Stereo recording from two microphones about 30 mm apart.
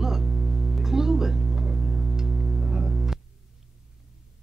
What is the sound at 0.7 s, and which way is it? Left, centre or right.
Music, centre.